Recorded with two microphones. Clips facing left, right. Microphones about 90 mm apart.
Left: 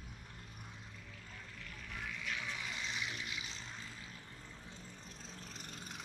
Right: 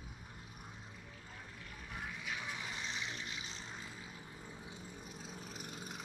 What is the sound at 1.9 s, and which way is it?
Music, 20° right (ahead or behind).